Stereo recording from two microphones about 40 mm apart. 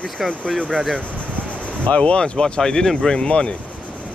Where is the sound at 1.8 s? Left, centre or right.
Left.